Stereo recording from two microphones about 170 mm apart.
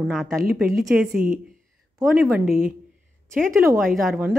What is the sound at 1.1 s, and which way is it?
Speech, 60° right (ahead or behind).